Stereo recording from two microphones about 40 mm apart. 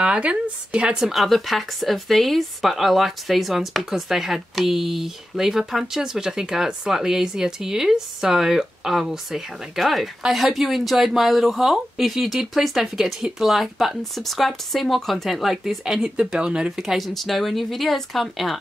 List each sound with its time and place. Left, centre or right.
0.0 s speech: right
1.1 s speech: centre
15.4 s speech: centre
16.7 s speech: centre